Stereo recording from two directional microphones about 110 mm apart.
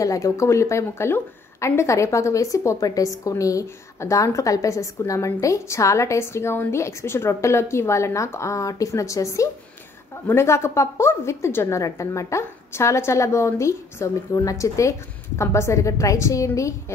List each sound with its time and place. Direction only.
0.0 s a woman's voice: 30° left (ahead or behind)